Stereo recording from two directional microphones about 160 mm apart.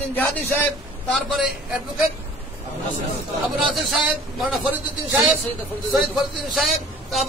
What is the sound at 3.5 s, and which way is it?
A man's voice, centre (ahead or behind).